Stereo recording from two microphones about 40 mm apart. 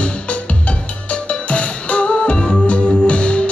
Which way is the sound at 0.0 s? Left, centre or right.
Left.